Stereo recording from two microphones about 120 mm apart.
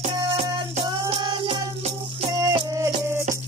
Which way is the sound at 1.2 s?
40° right (ahead or behind).